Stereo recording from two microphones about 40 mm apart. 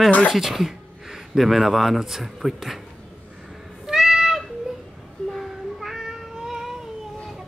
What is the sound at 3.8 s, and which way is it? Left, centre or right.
Cat, centre.